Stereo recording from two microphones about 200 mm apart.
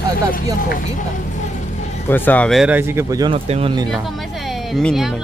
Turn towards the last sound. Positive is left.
turn(degrees=0)  # may be behind; listen again after turning